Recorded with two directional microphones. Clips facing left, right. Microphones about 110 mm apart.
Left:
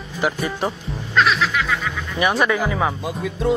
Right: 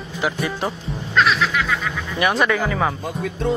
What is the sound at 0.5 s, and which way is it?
Speech, centre (ahead or behind).